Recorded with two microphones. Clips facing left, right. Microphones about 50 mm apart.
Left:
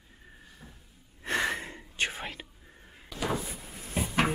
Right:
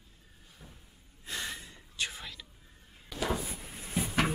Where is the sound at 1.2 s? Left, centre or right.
Left.